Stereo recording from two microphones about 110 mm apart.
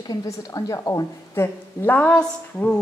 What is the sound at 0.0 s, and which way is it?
A woman's voice, 35° left (ahead or behind).